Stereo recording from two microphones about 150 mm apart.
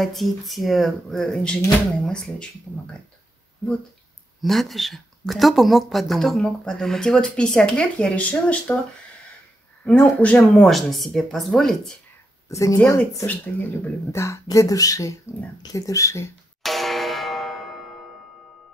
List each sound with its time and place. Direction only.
0.0 s speech: centre (ahead or behind)
4.4 s speech: centre (ahead or behind)
9.8 s speech: 10° left (ahead or behind)
12.4 s speech: 20° left (ahead or behind)
16.6 s music: centre (ahead or behind)